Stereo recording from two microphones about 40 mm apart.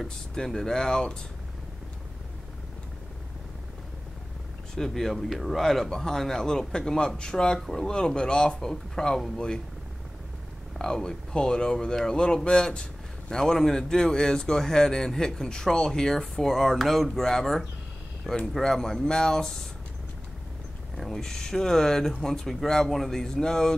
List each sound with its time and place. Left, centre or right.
0.3 s speech: centre
4.7 s speech: centre
5.6 s speech: centre
10.8 s speech: centre
20.9 s speech: centre